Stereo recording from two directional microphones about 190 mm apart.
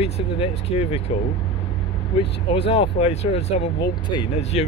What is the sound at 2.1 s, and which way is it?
Speech, 30° left (ahead or behind).